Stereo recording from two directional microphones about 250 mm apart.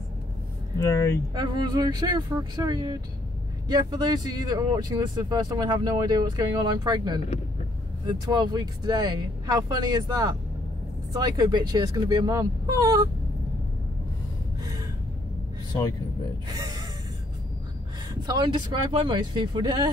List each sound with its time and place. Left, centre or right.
0.7 s speech: centre
1.3 s speech: centre
16.5 s speech: centre
18.2 s speech: centre